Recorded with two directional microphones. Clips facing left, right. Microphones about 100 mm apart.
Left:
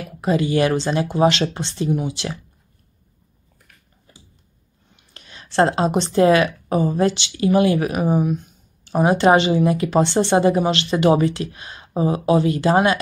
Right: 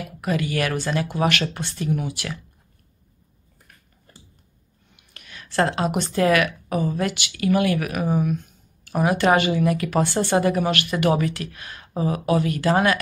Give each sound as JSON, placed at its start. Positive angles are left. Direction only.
{"t": 0.2, "sound": "speech", "side_deg": 25}
{"t": 4.9, "sound": "a woman's voice", "side_deg": 30}